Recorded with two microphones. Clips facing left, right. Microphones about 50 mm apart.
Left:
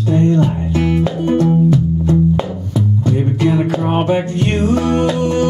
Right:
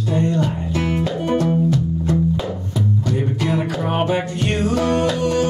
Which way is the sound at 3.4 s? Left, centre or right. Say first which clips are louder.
Left 8 dB; left.